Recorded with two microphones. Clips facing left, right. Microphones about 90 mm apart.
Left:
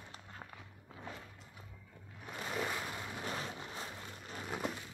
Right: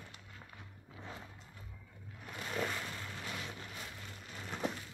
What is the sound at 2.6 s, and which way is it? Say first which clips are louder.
Boat: right 1 dB; 10° left (ahead or behind).